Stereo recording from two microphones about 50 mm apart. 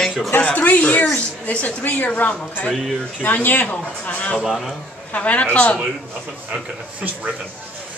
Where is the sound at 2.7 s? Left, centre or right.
Centre.